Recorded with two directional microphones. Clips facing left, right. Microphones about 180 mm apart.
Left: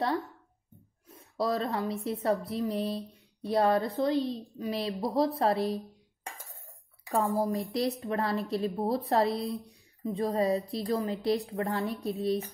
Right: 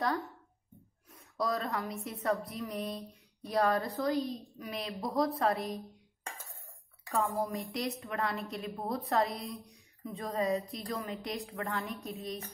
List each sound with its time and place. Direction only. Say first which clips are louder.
1.1 s a woman's voice: left 4 dB; 35° left (ahead or behind)
7.1 s a woman's voice: left 4 dB; 35° left (ahead or behind)